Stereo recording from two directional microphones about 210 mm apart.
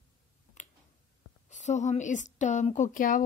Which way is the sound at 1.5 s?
35° left (ahead or behind).